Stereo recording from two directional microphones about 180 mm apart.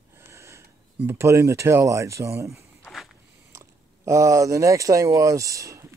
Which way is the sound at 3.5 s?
15° right (ahead or behind).